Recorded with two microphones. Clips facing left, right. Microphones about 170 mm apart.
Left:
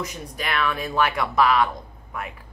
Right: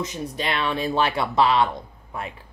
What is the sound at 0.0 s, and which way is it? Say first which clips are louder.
Speech: right 3 dB; 25° right (ahead or behind).